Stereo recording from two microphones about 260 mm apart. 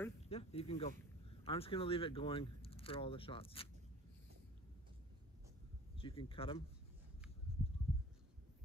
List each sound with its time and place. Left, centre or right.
0.3 s speech: left
5.9 s speech: left
7.5 s a sound: left